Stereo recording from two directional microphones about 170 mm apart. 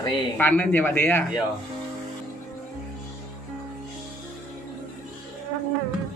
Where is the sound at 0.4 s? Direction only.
10° left (ahead or behind).